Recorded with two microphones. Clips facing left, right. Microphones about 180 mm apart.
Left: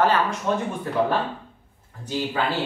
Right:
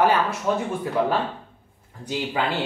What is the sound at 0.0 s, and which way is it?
Speech, 10° right (ahead or behind).